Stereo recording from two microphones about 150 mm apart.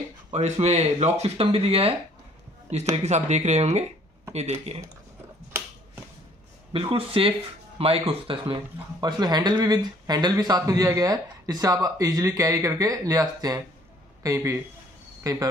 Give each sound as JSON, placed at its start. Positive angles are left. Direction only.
{"t": 0.3, "sound": "speech", "side_deg": -45}
{"t": 3.0, "sound": "speech", "side_deg": -50}
{"t": 6.7, "sound": "speech", "side_deg": -35}
{"t": 9.0, "sound": "speech", "side_deg": -30}